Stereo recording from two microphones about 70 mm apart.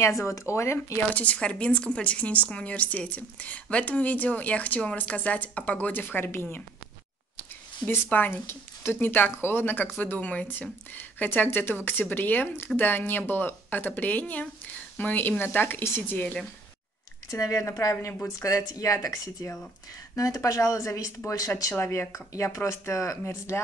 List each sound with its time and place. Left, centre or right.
0.0 s speech: left
1.1 s speech: centre
7.8 s speech: left
17.3 s speech: left
21.7 s speech: left
22.1 s speech: left
23.2 s speech: left